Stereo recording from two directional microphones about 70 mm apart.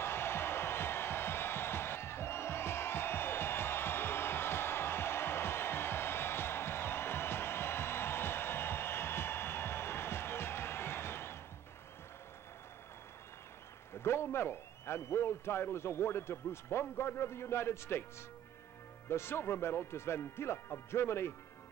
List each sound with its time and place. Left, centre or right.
0.0 s music: left
14.0 s a man's voice: left
19.0 s speech: left